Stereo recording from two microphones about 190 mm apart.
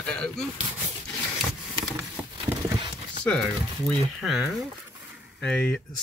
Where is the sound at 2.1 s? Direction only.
10° right (ahead or behind).